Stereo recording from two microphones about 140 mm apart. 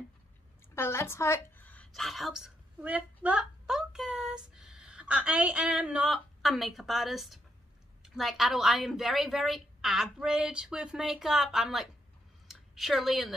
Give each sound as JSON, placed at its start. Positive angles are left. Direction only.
{"t": 0.7, "sound": "a woman's voice", "side_deg": 15}
{"t": 2.0, "sound": "a woman's voice", "side_deg": 0}